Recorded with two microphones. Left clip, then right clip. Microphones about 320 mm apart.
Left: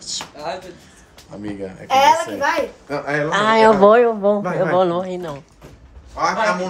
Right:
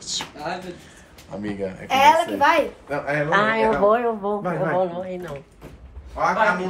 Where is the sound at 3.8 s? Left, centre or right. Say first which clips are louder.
Left 7 dB; left.